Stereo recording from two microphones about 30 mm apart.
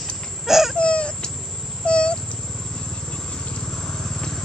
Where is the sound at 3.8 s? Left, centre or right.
Centre.